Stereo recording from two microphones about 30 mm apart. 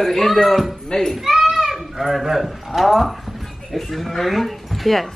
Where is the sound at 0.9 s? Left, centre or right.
Centre.